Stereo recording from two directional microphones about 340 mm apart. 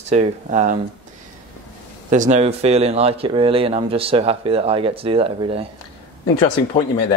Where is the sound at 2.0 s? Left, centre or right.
Right.